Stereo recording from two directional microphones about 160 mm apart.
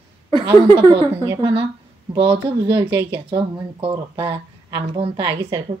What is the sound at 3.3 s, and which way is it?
A woman's voice, 35° right (ahead or behind).